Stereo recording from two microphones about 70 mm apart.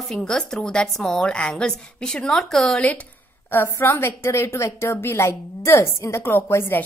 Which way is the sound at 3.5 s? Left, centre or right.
Left.